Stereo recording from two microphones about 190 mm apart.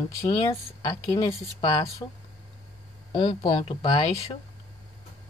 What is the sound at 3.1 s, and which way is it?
Speech, 25° left (ahead or behind).